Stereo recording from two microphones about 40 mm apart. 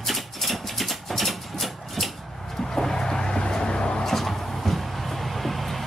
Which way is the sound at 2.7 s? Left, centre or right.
Centre.